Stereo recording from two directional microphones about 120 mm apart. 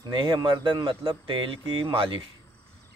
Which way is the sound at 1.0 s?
50° right (ahead or behind).